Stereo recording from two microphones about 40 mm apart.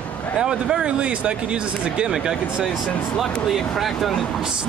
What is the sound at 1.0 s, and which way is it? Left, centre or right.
Speech, right.